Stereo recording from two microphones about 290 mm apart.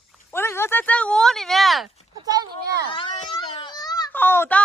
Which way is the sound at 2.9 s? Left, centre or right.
Centre.